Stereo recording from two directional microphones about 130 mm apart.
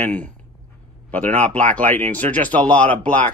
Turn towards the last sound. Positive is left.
turn(degrees=10)  # may be behind; listen again after turning